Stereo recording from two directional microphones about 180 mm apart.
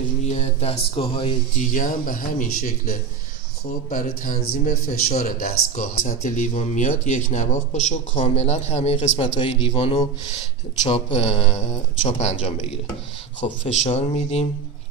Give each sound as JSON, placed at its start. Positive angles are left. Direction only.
{"t": 0.3, "sound": "speech", "side_deg": 35}
{"t": 1.6, "sound": "a man's voice", "side_deg": 45}
{"t": 11.1, "sound": "speech", "side_deg": 30}